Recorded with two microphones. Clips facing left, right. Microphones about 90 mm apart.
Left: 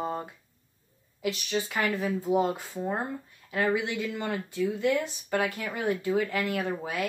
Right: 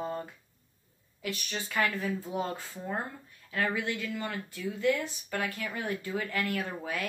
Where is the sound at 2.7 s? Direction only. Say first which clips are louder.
Left 5 dB; 25° left (ahead or behind).